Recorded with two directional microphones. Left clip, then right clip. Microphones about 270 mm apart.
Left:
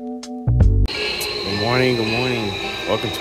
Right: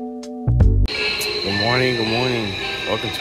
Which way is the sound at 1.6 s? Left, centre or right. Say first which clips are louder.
Left 1 dB; centre.